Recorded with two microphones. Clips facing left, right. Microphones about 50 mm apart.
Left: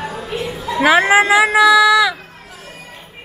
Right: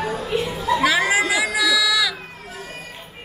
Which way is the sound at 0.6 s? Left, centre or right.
Left.